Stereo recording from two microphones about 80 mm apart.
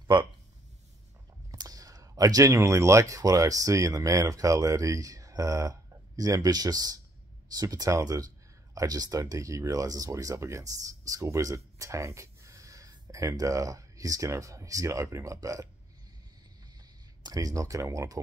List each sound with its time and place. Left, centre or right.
1.5 s clicking: right
2.5 s speech: right
17.2 s speech: right